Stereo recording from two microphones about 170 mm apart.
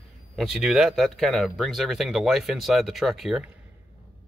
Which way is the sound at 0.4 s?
Centre (ahead or behind).